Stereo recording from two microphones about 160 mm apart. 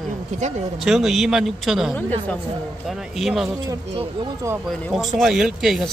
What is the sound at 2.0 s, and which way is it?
Speech, 10° left (ahead or behind).